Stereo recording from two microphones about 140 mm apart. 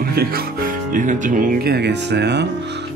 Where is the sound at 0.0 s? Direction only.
90° right.